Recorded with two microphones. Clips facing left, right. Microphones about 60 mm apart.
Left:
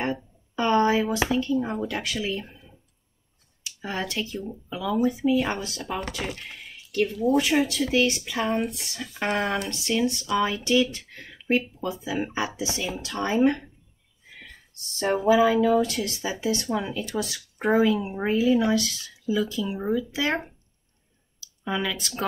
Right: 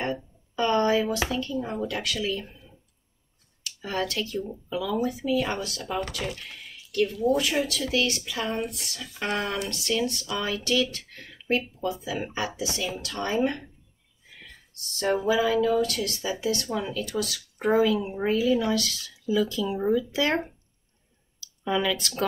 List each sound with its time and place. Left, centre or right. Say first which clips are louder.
0.0 s a sound: left 1 dB; left
1.1 s speech: left 4 dB; left
15.3 s speech: left 5 dB; centre
15.8 s speech: left 1 dB; left
18.3 s speech: left 3 dB; centre
21.6 s speech: right 2 dB; centre